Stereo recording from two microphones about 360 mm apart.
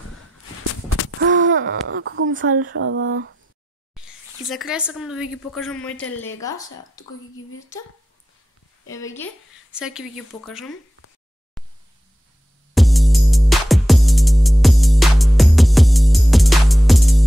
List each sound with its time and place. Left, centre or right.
1.2 s speech: right
3.9 s a woman's voice: centre
11.6 s a sound: centre
12.7 s music: centre